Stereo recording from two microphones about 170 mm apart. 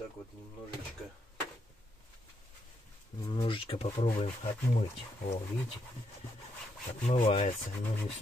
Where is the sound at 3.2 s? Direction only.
30° left (ahead or behind).